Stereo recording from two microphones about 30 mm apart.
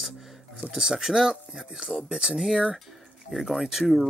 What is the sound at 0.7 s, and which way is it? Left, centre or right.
Speech, right.